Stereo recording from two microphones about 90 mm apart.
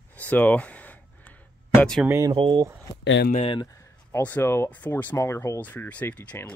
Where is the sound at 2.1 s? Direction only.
35° right (ahead or behind).